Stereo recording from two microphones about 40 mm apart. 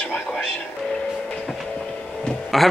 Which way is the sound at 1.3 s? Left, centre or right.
Centre.